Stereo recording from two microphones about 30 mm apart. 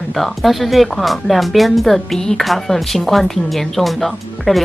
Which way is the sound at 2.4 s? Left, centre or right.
Centre.